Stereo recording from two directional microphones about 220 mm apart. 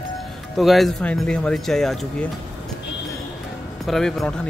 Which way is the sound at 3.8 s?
Centre (ahead or behind).